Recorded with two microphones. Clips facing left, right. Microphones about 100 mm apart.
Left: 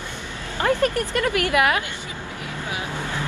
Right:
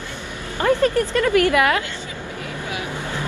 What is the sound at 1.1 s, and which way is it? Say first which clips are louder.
Speech: right 4 dB; 20° left (ahead or behind).